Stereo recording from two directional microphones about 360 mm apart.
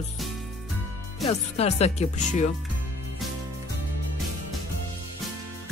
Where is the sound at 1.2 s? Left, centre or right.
Centre.